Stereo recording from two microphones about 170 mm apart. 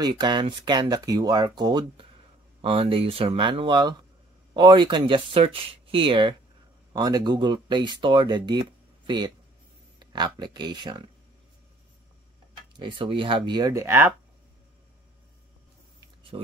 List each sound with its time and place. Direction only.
0.0 s speech: 25° right (ahead or behind)
12.7 s speech: 30° right (ahead or behind)
16.0 s a sound: 30° right (ahead or behind)